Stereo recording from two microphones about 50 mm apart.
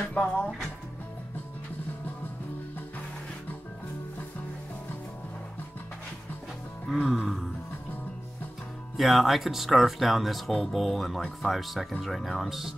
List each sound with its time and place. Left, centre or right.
0.2 s speech: centre
6.9 s speech: centre
8.9 s speech: centre